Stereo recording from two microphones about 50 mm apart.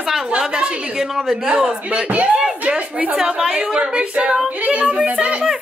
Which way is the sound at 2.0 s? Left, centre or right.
Right.